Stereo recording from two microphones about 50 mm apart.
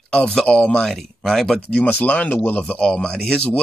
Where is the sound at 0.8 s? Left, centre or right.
Centre.